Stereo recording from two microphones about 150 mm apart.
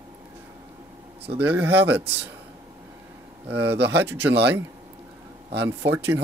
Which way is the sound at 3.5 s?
15° right (ahead or behind).